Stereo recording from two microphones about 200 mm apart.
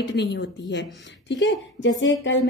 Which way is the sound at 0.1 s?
60° left (ahead or behind).